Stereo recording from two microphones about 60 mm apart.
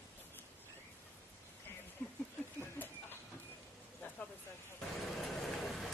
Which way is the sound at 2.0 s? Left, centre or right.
Left.